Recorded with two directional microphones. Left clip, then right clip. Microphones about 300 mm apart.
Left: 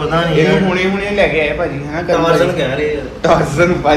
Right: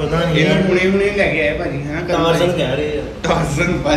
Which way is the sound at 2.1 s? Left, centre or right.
Centre.